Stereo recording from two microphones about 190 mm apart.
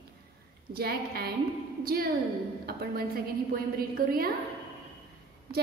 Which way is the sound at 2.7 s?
55° right (ahead or behind).